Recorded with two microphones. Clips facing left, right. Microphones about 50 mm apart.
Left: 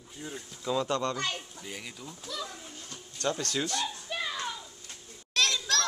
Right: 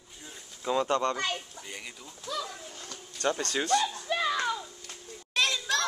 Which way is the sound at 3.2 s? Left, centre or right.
Right.